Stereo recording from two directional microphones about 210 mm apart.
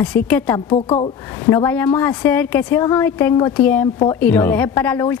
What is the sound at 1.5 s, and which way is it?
Speech, 10° left (ahead or behind).